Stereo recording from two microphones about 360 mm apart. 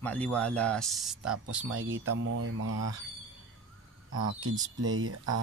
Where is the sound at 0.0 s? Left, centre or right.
Centre.